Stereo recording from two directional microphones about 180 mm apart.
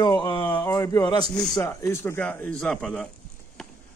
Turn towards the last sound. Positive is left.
turn(degrees=5)  # may be behind; listen again after turning